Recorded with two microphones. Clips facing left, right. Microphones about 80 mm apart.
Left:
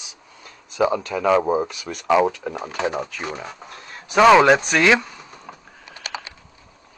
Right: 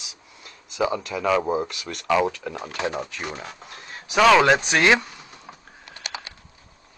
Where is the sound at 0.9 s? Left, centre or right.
Left.